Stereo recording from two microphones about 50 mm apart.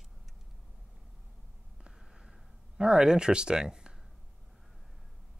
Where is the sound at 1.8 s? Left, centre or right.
Centre.